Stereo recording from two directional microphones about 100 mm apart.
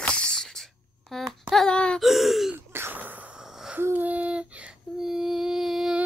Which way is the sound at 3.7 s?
20° right (ahead or behind).